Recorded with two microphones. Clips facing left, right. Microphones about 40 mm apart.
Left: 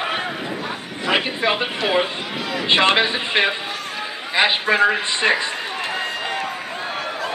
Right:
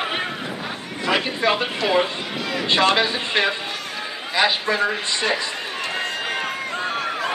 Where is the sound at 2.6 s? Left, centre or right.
Left.